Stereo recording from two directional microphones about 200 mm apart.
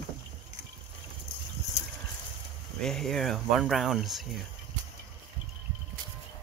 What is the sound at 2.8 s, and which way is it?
Speech, centre (ahead or behind).